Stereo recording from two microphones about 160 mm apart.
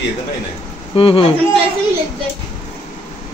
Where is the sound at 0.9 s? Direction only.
35° left (ahead or behind).